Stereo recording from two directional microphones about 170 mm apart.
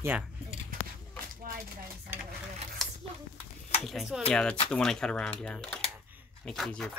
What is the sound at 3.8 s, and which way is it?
Speech, centre (ahead or behind).